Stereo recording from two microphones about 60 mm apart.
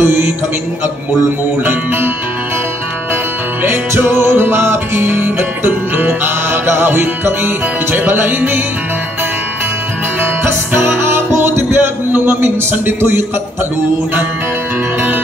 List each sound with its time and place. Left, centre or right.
0.0 s mantra: right
1.6 s music: right
3.6 s music: right
10.2 s music: right